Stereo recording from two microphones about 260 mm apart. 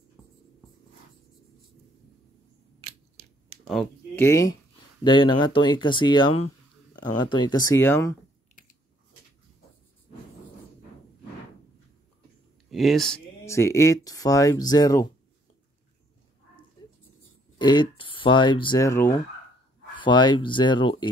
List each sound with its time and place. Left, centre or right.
3.6 s speech: centre
12.6 s speech: centre
16.8 s a sound: centre
17.6 s speech: centre